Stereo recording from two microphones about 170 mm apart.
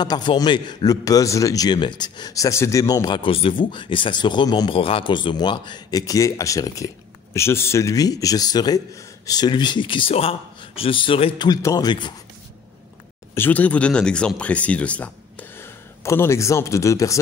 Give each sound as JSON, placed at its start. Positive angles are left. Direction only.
{"t": 0.0, "sound": "a man's voice", "side_deg": 25}
{"t": 13.3, "sound": "speech", "side_deg": 10}